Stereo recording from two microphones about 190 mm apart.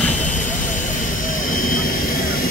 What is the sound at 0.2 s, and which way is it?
Vehicle, 40° left (ahead or behind).